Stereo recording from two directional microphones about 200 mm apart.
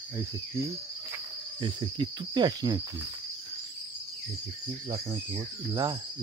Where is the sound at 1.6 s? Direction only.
25° right (ahead or behind).